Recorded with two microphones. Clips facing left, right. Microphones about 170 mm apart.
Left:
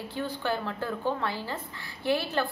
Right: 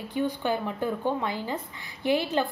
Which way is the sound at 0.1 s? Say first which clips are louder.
Right 4 dB; 15° right (ahead or behind).